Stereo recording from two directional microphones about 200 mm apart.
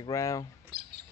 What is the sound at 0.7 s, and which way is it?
Bird, 50° right (ahead or behind).